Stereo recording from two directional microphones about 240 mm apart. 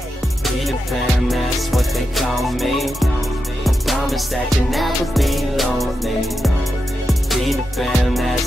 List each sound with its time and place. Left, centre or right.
0.7 s music: centre